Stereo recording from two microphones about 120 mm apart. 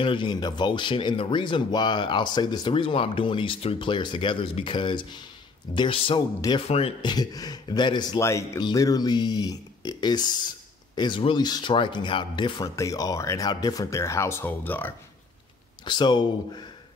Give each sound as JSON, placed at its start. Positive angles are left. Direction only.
{"t": 0.0, "sound": "speech", "side_deg": 45}
{"t": 7.0, "sound": "speech", "side_deg": 35}
{"t": 8.2, "sound": "speech", "side_deg": 25}
{"t": 12.6, "sound": "speech", "side_deg": 25}
{"t": 15.8, "sound": "speech", "side_deg": 40}